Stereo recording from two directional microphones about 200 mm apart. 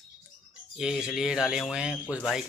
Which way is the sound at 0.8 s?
5° right (ahead or behind).